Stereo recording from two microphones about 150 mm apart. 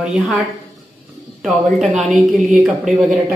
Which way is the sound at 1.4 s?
Centre (ahead or behind).